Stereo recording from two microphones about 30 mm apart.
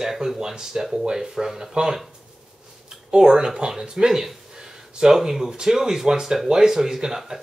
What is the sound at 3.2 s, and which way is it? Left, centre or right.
Speech, right.